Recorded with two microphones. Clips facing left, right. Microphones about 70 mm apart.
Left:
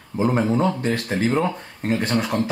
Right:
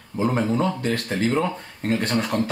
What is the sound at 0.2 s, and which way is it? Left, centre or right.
Speech, centre.